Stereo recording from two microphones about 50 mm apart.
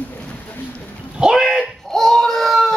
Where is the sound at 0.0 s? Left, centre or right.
Left.